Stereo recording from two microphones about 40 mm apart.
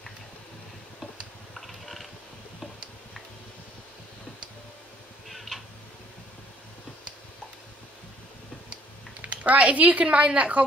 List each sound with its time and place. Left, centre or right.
1.5 s a sound: centre
5.3 s tick-tock: centre
9.2 s speech: right